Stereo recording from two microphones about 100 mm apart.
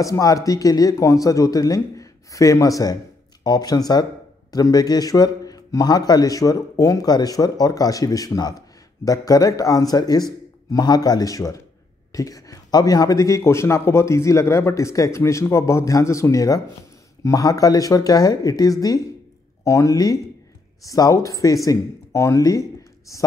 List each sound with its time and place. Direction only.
0.0 s a man's voice: 35° left (ahead or behind)